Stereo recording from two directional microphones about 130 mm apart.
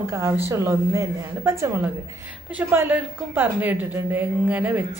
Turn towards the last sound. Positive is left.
turn(degrees=-15)  # may be behind; listen again after turning